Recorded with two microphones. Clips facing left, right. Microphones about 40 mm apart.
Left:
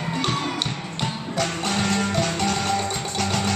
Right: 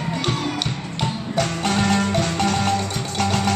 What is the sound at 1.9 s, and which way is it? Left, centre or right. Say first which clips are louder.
Music: right 2 dB; centre.